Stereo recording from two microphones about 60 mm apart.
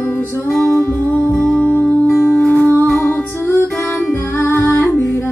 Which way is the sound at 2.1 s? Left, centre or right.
Left.